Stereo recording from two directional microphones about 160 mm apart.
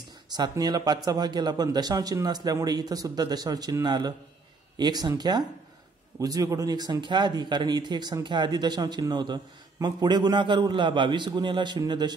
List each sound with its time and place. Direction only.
0.3 s a man's voice: 25° right (ahead or behind)